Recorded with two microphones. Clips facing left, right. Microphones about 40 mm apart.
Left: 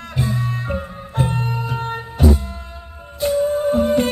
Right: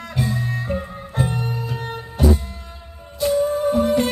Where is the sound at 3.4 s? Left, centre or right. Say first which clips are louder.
Left 1 dB; left.